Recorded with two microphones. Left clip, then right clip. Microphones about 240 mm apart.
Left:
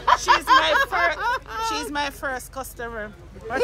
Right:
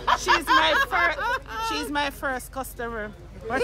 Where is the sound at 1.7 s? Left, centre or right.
Right.